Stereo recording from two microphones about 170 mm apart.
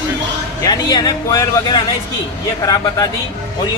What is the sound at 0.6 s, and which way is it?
A man's voice, 25° left (ahead or behind).